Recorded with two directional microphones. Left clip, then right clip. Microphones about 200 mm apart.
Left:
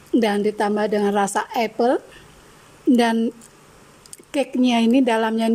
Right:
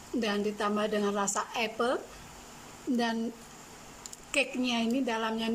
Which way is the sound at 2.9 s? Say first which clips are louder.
Left 13 dB; 45° left (ahead or behind).